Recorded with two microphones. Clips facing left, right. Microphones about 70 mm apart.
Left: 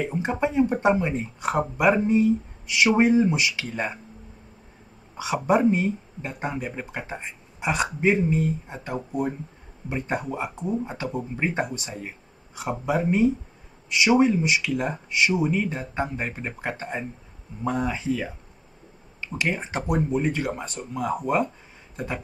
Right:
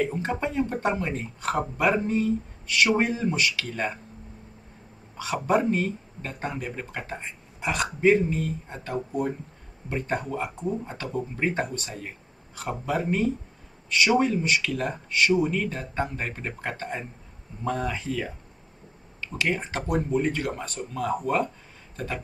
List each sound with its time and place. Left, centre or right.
0.0 s speech: centre
2.8 s speech: centre
5.1 s speech: centre
6.8 s speech: centre
14.4 s speech: centre
14.7 s speech: centre
15.0 s speech: centre
20.1 s speech: centre
21.9 s a sound: centre